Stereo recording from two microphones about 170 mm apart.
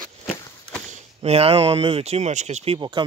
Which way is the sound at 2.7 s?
25° right (ahead or behind).